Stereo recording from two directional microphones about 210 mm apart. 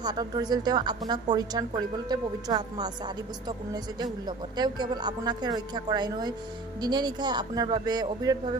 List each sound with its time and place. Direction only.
0.0 s a woman's voice: 20° right (ahead or behind)